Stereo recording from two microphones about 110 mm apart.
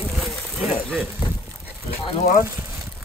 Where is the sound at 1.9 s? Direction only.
60° left (ahead or behind).